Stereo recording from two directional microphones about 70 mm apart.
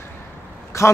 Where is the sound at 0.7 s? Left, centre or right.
Left.